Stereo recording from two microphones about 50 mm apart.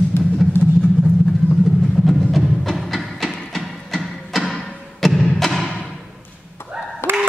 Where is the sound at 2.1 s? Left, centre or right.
Centre.